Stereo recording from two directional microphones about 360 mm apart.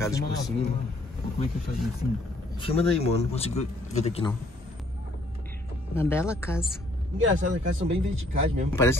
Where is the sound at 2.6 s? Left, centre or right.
Centre.